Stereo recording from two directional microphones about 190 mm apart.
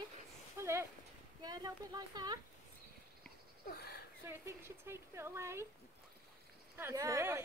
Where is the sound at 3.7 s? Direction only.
55° left (ahead or behind).